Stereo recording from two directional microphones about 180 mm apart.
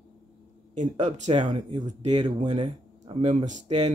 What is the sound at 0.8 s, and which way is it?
Speech, 40° right (ahead or behind).